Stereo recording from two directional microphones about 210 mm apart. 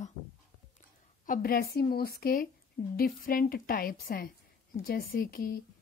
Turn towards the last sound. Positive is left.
turn(degrees=45)  # may be behind; listen again after turning